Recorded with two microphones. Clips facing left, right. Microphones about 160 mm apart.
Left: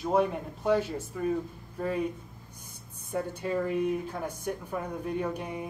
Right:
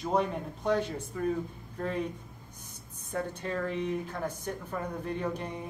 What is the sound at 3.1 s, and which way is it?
Speech, 10° left (ahead or behind).